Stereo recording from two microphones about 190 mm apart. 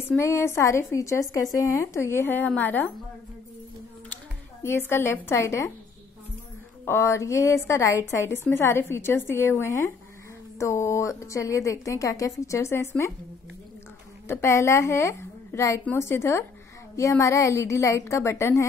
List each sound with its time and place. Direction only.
0.1 s a woman's voice: 15° left (ahead or behind)
4.6 s a woman's voice: 10° left (ahead or behind)
6.8 s a woman's voice: 15° left (ahead or behind)
14.2 s a woman's voice: 15° left (ahead or behind)